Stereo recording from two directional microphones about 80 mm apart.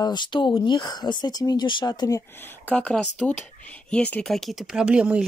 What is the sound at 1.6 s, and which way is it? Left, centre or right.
Speech, left.